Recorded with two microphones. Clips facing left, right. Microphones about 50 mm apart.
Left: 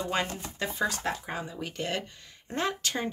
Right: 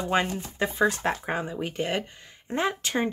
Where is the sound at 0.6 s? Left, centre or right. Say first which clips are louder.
Right 6 dB; right.